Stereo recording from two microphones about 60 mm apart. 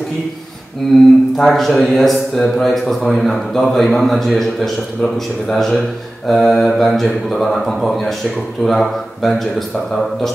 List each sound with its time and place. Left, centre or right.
0.8 s speech: centre